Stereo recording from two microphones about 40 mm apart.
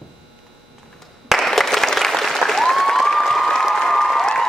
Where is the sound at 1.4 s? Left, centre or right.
Centre.